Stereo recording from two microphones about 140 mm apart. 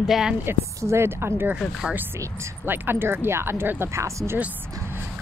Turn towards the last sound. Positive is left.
turn(degrees=-15)  # may be behind; listen again after turning